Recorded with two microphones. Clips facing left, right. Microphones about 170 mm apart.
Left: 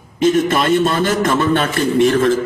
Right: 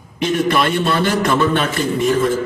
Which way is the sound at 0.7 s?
45° left (ahead or behind).